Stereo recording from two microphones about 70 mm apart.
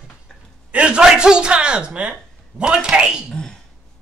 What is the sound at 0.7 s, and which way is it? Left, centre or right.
Speech, centre.